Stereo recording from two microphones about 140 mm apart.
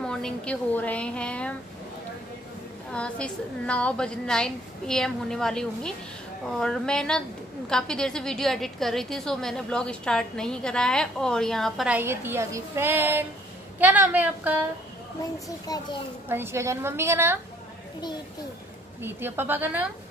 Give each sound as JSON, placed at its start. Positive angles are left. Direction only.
{"t": 0.0, "sound": "a woman's voice", "side_deg": 5}
{"t": 2.9, "sound": "a woman's voice", "side_deg": 5}
{"t": 11.9, "sound": "a woman's voice", "side_deg": -15}
{"t": 15.7, "sound": "a child's voice", "side_deg": 25}
{"t": 16.3, "sound": "a woman's voice", "side_deg": -15}
{"t": 18.9, "sound": "a woman's voice", "side_deg": -15}